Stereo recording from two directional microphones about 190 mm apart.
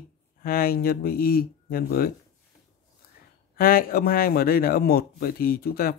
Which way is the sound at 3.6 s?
50° left (ahead or behind).